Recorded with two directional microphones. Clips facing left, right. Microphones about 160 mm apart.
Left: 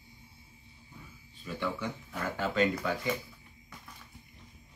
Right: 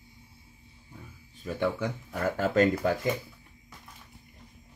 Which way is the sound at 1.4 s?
45° right (ahead or behind).